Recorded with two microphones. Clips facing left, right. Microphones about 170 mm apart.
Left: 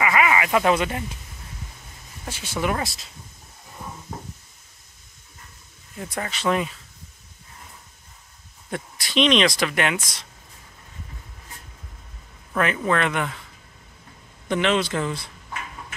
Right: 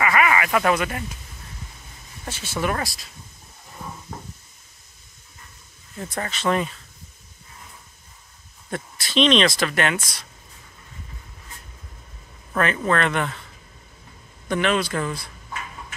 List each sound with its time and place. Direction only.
0.0 s speech: 20° left (ahead or behind)
2.2 s speech: 15° left (ahead or behind)
5.9 s speech: 10° left (ahead or behind)
8.6 s speech: 15° left (ahead or behind)
12.5 s speech: 10° left (ahead or behind)
14.5 s speech: 20° left (ahead or behind)